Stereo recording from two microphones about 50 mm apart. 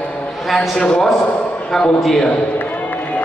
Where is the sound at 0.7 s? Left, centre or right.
Centre.